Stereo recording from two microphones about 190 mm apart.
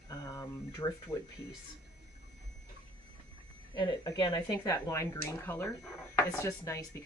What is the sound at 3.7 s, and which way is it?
Speech, 20° left (ahead or behind).